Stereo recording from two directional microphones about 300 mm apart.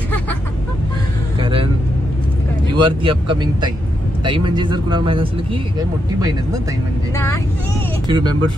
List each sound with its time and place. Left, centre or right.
1.4 s vehicle: centre
2.7 s speech: centre
8.1 s speech: centre